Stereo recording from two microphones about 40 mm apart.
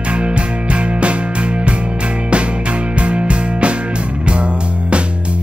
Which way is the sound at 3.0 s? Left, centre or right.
Right.